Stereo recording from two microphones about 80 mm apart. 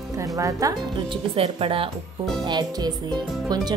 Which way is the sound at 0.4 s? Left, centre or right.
Right.